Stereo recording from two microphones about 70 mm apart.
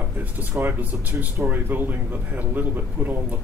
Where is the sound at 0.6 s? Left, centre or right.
Right.